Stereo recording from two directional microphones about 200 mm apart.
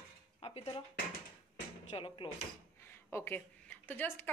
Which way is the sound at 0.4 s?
30° left (ahead or behind).